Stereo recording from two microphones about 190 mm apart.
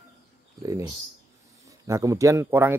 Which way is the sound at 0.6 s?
20° right (ahead or behind).